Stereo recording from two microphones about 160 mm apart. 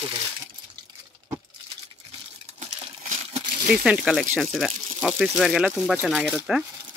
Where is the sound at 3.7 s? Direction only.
5° right (ahead or behind).